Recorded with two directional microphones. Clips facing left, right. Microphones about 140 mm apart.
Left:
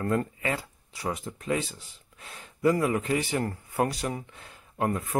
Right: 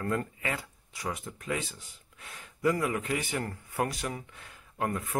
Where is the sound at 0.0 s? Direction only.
30° left (ahead or behind).